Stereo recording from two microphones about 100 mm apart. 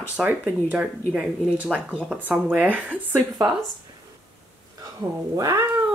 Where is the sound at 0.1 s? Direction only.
15° right (ahead or behind).